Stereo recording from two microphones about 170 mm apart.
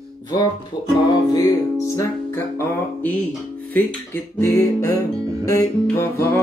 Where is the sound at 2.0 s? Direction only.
15° left (ahead or behind).